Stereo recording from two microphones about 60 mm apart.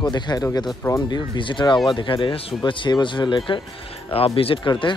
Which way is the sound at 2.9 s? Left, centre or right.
Left.